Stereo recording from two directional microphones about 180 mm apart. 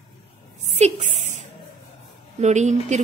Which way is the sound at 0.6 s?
40° right (ahead or behind).